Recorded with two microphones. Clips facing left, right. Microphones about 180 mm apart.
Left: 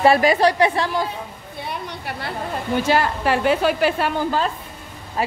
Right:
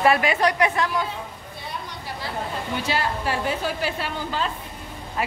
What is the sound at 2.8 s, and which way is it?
A woman's voice, 60° left (ahead or behind).